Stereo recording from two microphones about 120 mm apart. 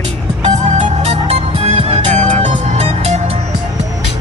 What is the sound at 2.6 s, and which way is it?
Music, 65° right (ahead or behind).